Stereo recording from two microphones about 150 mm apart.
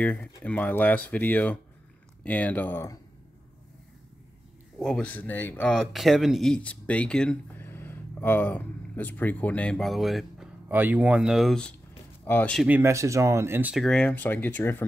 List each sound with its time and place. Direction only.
0.0 s speech: 10° left (ahead or behind)
4.7 s speech: 5° left (ahead or behind)
10.7 s speech: 10° right (ahead or behind); by 12.6 s 10° left (ahead or behind)
12.6 s speech: 15° right (ahead or behind)
13.7 s speech: 5° left (ahead or behind)